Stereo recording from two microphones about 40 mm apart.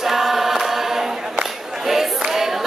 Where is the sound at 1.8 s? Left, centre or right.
Centre.